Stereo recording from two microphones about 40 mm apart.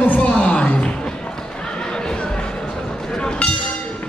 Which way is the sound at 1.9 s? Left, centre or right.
Centre.